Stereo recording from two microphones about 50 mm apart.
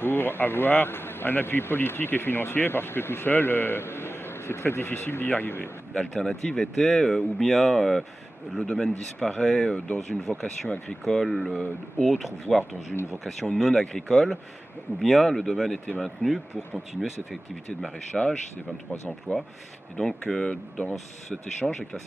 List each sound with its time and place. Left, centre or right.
0.0 s speech: left
5.9 s speech: centre
9.7 s speech: left
9.9 s speech: centre
14.0 s speech: centre
15.0 s speech: centre
18.1 s speech: centre
19.3 s speech: left
20.0 s speech: centre